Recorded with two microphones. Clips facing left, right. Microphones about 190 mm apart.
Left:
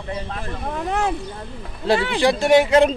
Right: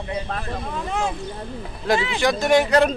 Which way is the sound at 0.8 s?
65° left (ahead or behind).